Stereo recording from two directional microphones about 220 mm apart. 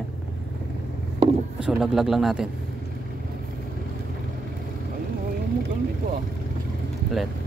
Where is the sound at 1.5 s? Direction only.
5° right (ahead or behind).